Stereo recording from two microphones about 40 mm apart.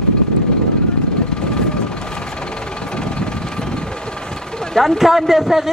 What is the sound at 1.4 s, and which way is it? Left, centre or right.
Vehicle, left.